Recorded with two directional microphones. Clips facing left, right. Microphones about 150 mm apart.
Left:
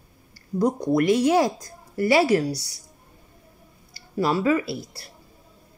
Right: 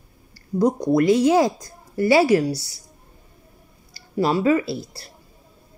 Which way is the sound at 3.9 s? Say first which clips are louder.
Right 2 dB; 25° right (ahead or behind).